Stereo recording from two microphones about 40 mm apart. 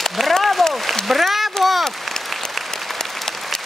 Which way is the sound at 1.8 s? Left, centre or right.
Centre.